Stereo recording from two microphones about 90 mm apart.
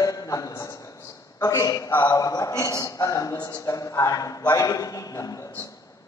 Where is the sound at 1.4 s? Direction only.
40° left (ahead or behind).